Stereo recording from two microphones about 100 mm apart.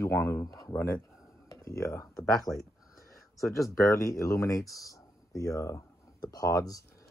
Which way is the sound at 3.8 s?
30° left (ahead or behind).